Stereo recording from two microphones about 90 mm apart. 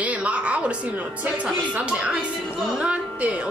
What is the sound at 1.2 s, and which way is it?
Speech, 15° right (ahead or behind).